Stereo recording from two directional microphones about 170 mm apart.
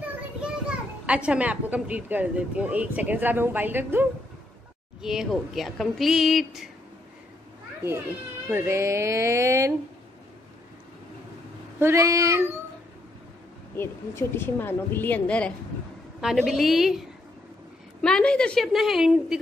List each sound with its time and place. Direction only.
0.4 s a child's voice: 5° right (ahead or behind)
8.5 s a child's voice: 15° right (ahead or behind)
11.8 s a child's voice: 15° right (ahead or behind)
13.7 s a woman's voice: 15° left (ahead or behind); by 17.0 s centre (ahead or behind)
18.0 s a woman's voice: 5° left (ahead or behind)